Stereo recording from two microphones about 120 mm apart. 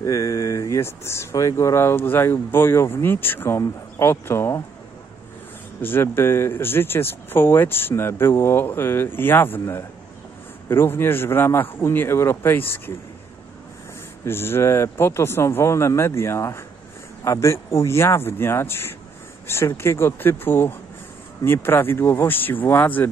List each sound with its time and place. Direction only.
0.0 s speech: 25° left (ahead or behind)
5.8 s speech: 20° left (ahead or behind)
14.2 s speech: 20° left (ahead or behind)